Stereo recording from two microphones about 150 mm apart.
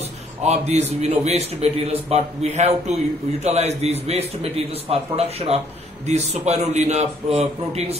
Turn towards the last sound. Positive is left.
turn(degrees=-45)  # may be behind; listen again after turning